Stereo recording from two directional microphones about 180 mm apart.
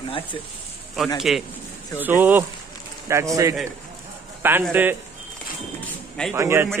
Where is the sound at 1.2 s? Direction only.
Centre (ahead or behind).